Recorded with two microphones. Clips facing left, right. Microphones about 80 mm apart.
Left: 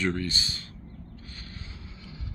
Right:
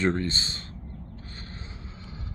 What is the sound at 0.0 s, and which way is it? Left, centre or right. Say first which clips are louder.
Speech: right 3 dB; right.